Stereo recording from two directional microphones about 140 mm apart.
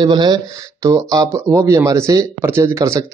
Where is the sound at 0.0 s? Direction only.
30° right (ahead or behind).